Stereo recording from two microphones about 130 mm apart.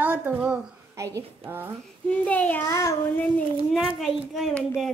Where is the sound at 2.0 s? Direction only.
10° left (ahead or behind).